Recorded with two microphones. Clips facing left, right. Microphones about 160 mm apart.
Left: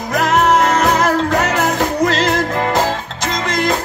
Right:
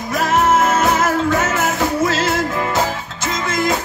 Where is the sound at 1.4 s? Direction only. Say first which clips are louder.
Left 2 dB; 65° left (ahead or behind).